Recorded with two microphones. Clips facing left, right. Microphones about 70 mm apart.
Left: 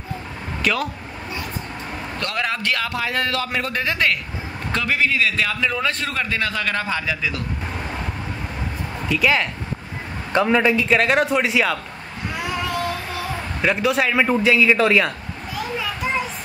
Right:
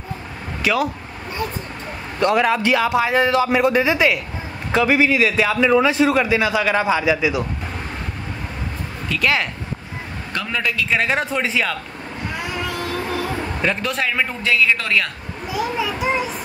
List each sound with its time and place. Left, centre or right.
0.7 s a man's voice: centre
2.1 s a man's voice: centre
9.1 s a man's voice: centre
10.3 s a man's voice: left
10.9 s a man's voice: centre
12.4 s child singing: centre
13.6 s a man's voice: centre
15.5 s a sound: centre